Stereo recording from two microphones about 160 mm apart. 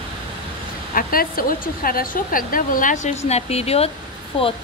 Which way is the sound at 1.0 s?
65° left (ahead or behind).